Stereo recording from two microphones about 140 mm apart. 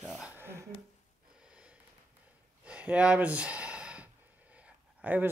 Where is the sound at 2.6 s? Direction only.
10° right (ahead or behind).